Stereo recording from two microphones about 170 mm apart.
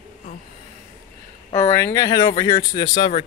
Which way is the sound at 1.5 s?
20° left (ahead or behind).